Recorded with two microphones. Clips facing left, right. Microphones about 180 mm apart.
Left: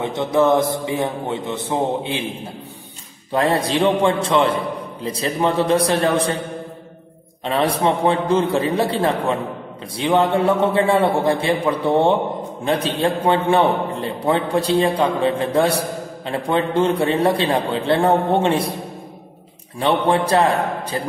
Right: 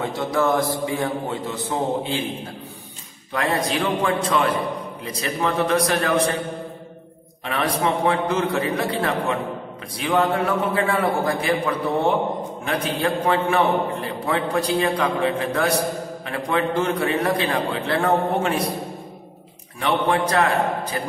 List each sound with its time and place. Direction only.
0.0 s a man's voice: 20° left (ahead or behind)
3.3 s a man's voice: 30° left (ahead or behind)
7.4 s a man's voice: 30° left (ahead or behind)
19.8 s a man's voice: 30° left (ahead or behind)